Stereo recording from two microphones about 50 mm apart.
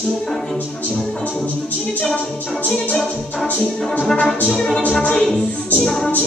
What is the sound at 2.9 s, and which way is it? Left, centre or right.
Music, centre.